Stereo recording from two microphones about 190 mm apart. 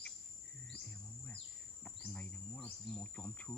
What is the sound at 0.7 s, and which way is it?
Insect, 5° left (ahead or behind).